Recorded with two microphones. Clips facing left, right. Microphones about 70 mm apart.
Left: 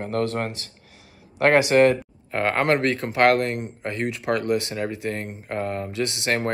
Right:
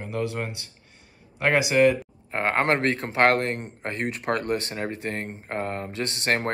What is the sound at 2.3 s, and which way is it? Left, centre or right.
Speech, right.